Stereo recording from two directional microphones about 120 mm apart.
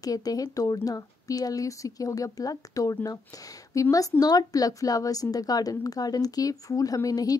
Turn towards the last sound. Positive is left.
turn(degrees=30)  # may be behind; listen again after turning